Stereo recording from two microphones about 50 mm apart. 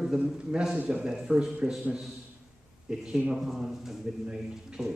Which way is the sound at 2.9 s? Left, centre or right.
Centre.